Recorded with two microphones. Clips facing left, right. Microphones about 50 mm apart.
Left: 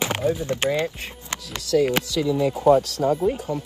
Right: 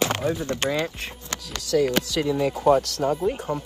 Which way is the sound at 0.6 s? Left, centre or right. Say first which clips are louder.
Left 3 dB; left.